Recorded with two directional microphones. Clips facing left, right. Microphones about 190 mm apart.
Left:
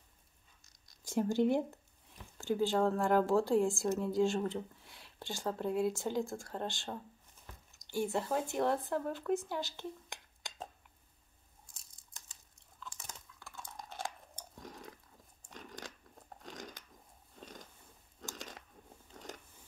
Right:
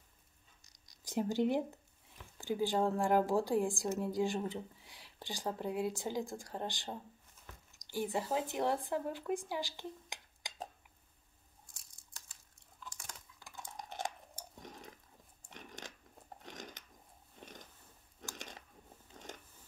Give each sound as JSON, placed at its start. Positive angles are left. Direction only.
{"t": 0.8, "sound": "speech", "side_deg": -15}
{"t": 8.1, "sound": "speech", "side_deg": -10}
{"t": 13.4, "sound": "cutlery", "side_deg": -15}
{"t": 14.6, "sound": "a sound", "side_deg": -20}